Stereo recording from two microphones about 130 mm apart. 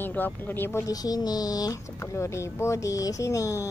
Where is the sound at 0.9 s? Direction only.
30° left (ahead or behind).